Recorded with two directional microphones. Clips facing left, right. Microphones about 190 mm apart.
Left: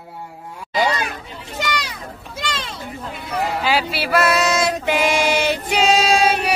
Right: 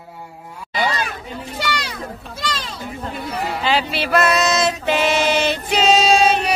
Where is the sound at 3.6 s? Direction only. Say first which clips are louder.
Even; 10° left (ahead or behind).